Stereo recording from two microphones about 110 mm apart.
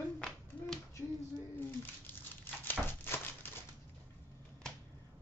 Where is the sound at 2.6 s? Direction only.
20° left (ahead or behind).